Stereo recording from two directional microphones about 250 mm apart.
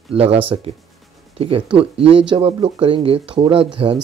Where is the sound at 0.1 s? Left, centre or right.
Right.